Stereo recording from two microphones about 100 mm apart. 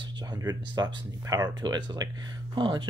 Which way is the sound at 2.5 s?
55° right (ahead or behind).